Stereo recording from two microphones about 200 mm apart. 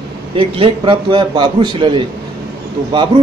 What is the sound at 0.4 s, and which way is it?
A man's voice, 25° right (ahead or behind).